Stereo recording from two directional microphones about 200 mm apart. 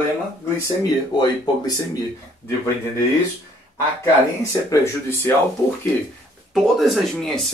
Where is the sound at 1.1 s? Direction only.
20° left (ahead or behind).